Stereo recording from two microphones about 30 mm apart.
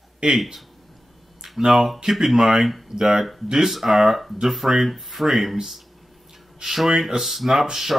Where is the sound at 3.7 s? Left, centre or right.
Centre.